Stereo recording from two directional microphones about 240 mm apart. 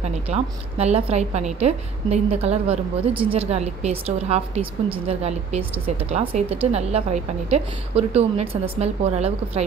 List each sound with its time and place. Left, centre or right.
0.0 s a woman's voice: right